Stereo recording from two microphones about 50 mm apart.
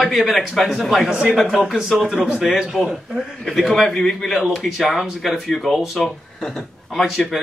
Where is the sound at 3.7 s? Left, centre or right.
Centre.